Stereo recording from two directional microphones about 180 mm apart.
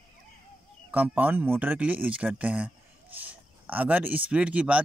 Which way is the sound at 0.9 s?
10° right (ahead or behind).